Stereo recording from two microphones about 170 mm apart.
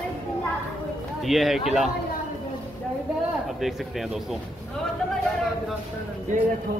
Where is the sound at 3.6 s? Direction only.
Centre (ahead or behind).